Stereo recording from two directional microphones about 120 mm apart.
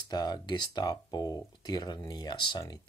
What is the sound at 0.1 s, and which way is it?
Speech, 35° left (ahead or behind).